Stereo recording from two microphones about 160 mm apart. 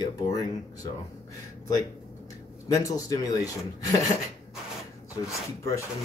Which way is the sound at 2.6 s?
20° left (ahead or behind).